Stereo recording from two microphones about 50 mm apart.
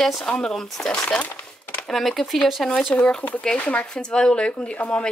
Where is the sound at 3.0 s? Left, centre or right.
Left.